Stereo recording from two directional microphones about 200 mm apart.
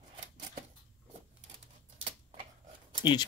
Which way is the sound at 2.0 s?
30° right (ahead or behind).